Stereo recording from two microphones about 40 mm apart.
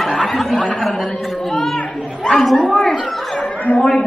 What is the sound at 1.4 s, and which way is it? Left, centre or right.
Chatter, centre.